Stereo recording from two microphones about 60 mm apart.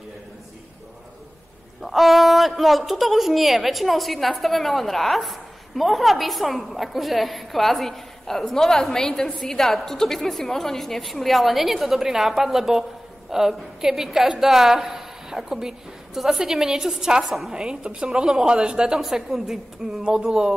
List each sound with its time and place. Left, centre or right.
1.8 s a woman's voice: centre